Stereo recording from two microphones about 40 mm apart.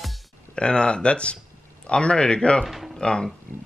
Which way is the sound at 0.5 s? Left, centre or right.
Left.